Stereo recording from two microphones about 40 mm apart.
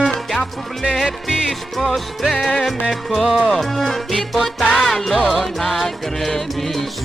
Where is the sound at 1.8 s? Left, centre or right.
Centre.